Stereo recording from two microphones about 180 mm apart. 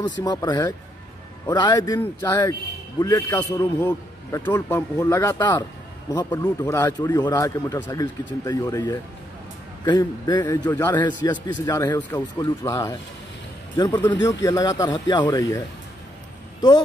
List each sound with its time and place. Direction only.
0.2 s speech: 20° left (ahead or behind)
3.0 s a man's voice: 20° left (ahead or behind)